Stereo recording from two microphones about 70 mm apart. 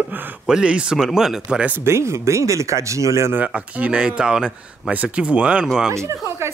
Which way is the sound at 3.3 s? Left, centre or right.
Right.